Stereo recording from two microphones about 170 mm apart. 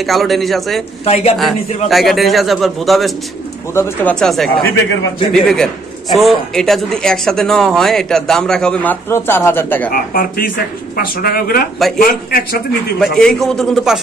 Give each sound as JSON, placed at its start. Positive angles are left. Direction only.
{"t": 0.0, "sound": "speech", "side_deg": 0}
{"t": 1.0, "sound": "a man's voice", "side_deg": 35}
{"t": 1.9, "sound": "speech", "side_deg": 0}
{"t": 9.8, "sound": "speech", "side_deg": 60}
{"t": 13.0, "sound": "speech", "side_deg": 5}